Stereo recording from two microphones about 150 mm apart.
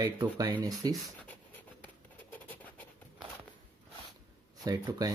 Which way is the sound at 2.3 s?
10° left (ahead or behind).